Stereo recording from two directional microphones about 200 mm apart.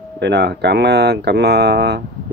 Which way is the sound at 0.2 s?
55° right (ahead or behind).